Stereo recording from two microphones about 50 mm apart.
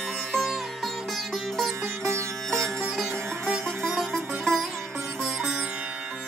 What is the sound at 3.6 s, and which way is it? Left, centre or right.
Music, right.